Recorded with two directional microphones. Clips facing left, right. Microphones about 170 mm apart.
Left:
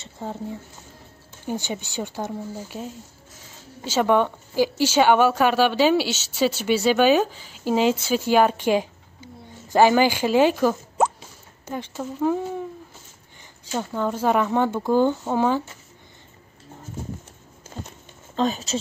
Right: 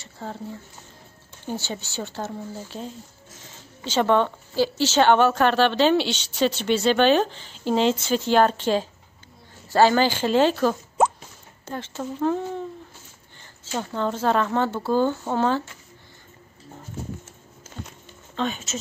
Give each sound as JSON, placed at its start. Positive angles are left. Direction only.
{"t": 0.0, "sound": "a woman's voice", "side_deg": 15}
{"t": 18.3, "sound": "speech", "side_deg": 35}